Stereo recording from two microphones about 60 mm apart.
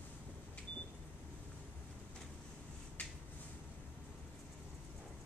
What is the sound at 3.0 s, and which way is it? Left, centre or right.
Finger snapping, left.